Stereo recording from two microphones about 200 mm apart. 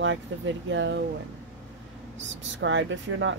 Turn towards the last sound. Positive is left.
turn(degrees=-70)  # may be behind; listen again after turning